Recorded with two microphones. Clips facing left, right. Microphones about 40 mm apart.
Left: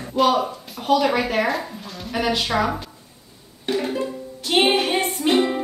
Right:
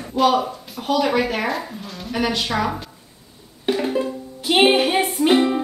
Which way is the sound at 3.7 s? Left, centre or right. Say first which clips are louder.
Right 3 dB; centre.